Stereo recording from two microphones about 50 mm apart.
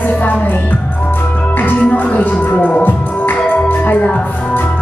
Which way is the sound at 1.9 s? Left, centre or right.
Left.